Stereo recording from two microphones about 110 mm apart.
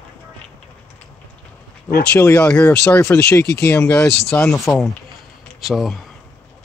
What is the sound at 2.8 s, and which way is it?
Speech, 25° left (ahead or behind).